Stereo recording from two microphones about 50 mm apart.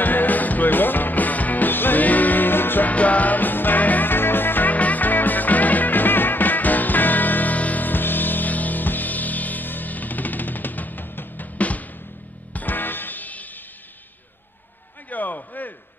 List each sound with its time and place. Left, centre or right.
0.0 s music: left
2.9 s music: left
15.0 s a sound: left